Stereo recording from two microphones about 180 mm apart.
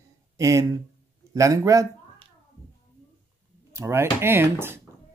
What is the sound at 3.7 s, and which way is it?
Speech, 15° right (ahead or behind).